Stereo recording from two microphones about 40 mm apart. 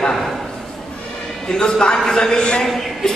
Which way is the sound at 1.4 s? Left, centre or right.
Centre.